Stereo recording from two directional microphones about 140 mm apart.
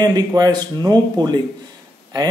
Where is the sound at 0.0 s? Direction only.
30° right (ahead or behind).